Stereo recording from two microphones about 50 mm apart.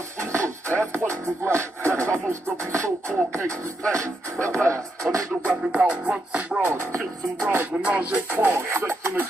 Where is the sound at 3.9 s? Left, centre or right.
Right.